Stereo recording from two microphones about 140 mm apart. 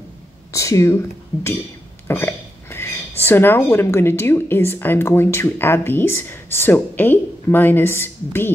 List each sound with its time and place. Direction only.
0.5 s speech: 20° left (ahead or behind)
2.0 s hiccup: 15° left (ahead or behind)
3.3 s a woman's voice: 15° left (ahead or behind)